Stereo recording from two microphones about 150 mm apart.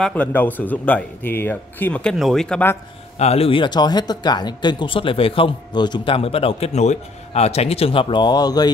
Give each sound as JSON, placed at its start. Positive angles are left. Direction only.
{"t": 0.0, "sound": "speech", "side_deg": 10}
{"t": 3.2, "sound": "speech", "side_deg": 45}